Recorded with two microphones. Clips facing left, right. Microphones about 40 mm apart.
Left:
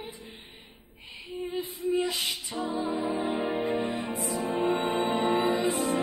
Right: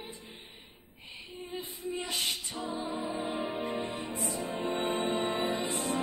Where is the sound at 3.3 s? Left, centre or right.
Left.